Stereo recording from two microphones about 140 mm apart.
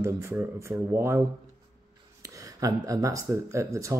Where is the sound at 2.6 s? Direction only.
25° right (ahead or behind).